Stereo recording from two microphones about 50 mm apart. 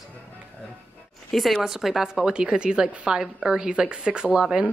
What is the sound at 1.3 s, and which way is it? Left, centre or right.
Speech, centre.